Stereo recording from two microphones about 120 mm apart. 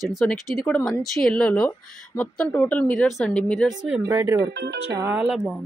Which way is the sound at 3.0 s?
Centre (ahead or behind).